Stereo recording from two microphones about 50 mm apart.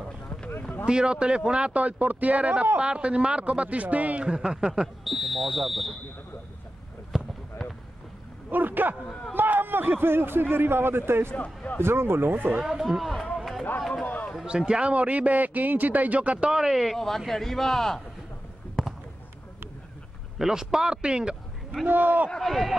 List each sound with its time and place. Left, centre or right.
0.8 s speech: centre
7.1 s a sound: centre
8.5 s a man's voice: right
11.3 s speech: left
11.8 s a man's voice: right
12.5 s speech: centre
13.0 s speech: centre
13.7 s music: centre
14.0 s a sound: left
14.7 s speech: right
16.5 s a man's voice: centre
20.3 s speech: centre
21.8 s speech: right
22.4 s speech: centre